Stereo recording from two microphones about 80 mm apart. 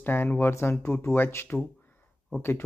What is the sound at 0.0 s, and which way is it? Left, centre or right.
Speech, left.